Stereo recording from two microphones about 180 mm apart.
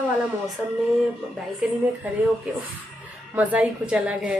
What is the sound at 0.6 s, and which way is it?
Speech, 5° right (ahead or behind).